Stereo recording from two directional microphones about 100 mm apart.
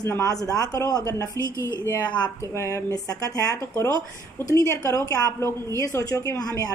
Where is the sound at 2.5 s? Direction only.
30° left (ahead or behind).